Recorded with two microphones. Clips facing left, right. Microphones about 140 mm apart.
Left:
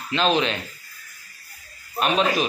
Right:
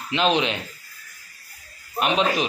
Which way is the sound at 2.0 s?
20° right (ahead or behind).